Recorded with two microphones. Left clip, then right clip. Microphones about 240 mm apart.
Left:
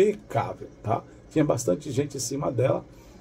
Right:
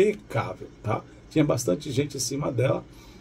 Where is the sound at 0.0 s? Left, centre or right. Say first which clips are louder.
Left 1 dB; centre.